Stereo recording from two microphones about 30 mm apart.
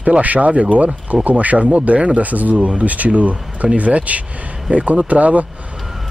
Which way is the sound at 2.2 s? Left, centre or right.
Right.